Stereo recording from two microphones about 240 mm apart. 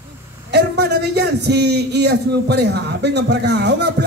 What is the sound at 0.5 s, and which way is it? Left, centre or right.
A man's voice, right.